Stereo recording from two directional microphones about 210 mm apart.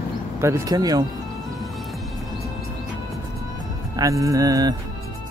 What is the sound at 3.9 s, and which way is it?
Speech, 15° right (ahead or behind).